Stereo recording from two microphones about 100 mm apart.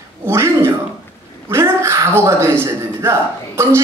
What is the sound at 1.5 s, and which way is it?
A woman's voice, 25° right (ahead or behind).